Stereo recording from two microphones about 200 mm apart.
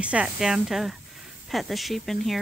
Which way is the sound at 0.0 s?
5° right (ahead or behind).